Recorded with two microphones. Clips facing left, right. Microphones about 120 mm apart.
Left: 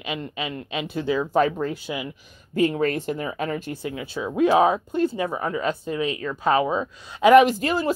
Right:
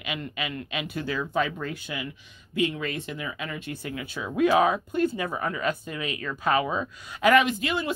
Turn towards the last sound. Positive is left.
turn(degrees=40)  # may be behind; listen again after turning